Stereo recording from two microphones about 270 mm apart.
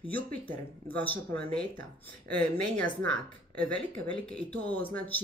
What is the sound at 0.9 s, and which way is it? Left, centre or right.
Speech, centre.